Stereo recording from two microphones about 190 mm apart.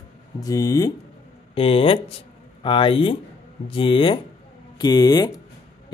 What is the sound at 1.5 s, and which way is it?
Speech, 30° left (ahead or behind).